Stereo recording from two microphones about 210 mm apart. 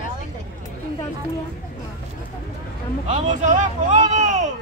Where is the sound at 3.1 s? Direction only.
35° right (ahead or behind).